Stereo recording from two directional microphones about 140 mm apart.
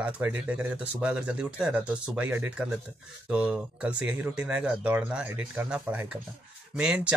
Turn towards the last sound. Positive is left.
turn(degrees=-5)  # may be behind; listen again after turning